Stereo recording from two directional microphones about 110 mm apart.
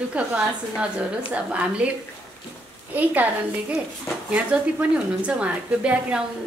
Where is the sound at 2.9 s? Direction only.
15° right (ahead or behind).